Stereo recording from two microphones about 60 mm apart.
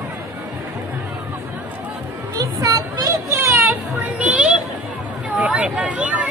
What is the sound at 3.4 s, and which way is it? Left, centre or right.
Children playing, right.